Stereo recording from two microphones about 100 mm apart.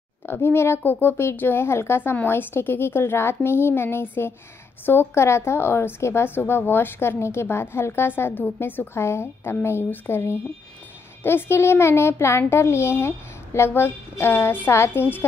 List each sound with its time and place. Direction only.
0.3 s a woman's voice: 25° left (ahead or behind)